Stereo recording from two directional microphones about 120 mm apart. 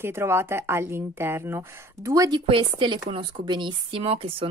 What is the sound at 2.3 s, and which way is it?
Speech, 45° right (ahead or behind).